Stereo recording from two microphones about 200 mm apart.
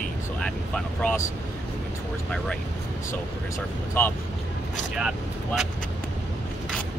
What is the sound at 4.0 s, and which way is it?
Speech, 10° left (ahead or behind).